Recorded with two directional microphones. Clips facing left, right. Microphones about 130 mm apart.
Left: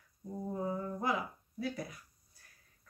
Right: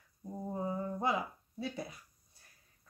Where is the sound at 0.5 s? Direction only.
25° right (ahead or behind).